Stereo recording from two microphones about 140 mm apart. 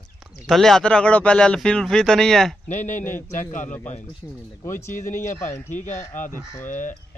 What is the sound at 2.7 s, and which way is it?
Speech, 60° left (ahead or behind).